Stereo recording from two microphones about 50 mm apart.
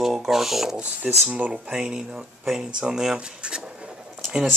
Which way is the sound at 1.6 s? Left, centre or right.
Centre.